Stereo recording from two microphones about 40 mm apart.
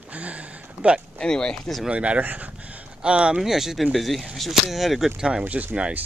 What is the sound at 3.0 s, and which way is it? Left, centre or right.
Speech, right.